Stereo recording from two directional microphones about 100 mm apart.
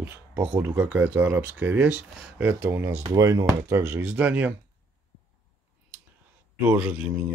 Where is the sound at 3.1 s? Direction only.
30° right (ahead or behind).